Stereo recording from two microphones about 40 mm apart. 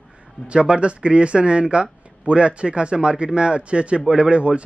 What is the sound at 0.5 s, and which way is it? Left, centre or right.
A man's voice, right.